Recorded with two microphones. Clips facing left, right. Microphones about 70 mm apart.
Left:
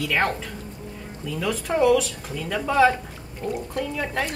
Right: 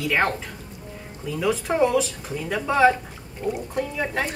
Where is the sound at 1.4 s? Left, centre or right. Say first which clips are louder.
Even; centre.